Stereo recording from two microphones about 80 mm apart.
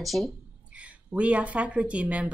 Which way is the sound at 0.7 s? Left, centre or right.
Centre.